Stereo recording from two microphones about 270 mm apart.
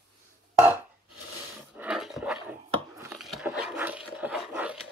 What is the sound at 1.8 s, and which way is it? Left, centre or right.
Dog, centre.